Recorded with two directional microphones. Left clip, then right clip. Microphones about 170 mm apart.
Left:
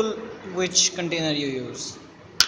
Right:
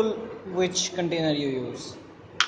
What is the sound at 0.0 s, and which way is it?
A man's voice, 10° right (ahead or behind).